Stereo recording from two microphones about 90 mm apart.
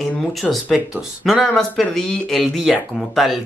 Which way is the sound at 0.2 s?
Centre (ahead or behind).